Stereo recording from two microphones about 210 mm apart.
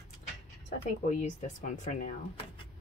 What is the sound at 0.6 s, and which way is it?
Speech, 35° left (ahead or behind).